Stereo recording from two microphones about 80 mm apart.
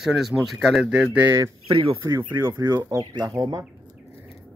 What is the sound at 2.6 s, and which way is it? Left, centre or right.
Speech, right.